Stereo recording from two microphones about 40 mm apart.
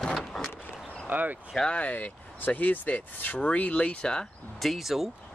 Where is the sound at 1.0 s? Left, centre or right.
Right.